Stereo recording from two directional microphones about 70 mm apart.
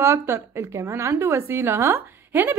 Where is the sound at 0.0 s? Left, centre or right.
Right.